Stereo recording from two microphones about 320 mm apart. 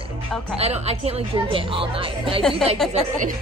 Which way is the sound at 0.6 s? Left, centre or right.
Centre.